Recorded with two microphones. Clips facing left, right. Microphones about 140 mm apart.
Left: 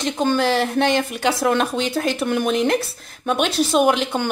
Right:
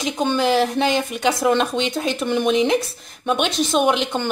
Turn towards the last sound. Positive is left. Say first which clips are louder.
# left 1 dB
turn(degrees=5)  # may be behind; listen again after turning